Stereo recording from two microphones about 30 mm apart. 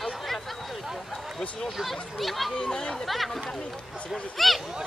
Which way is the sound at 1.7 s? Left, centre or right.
Centre.